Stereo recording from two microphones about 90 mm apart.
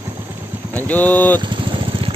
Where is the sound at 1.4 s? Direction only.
65° right (ahead or behind).